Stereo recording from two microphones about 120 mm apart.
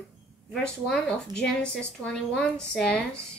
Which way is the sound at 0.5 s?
5° left (ahead or behind).